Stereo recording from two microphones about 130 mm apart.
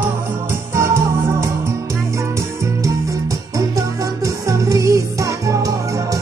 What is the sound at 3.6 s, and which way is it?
Music, 25° right (ahead or behind).